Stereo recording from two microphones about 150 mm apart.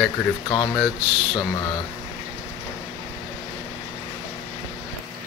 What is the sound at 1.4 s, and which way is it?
Speech, 30° left (ahead or behind).